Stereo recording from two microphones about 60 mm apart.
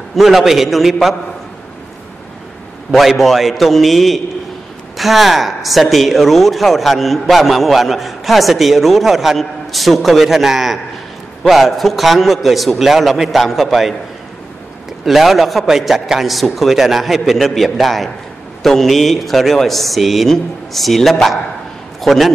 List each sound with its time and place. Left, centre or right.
0.1 s speech: centre
2.9 s speech: centre
15.0 s a man's voice: centre